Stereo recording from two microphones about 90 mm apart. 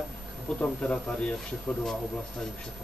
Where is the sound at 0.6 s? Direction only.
15° left (ahead or behind).